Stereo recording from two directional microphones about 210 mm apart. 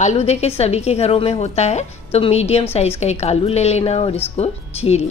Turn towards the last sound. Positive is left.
turn(degrees=30)  # may be behind; listen again after turning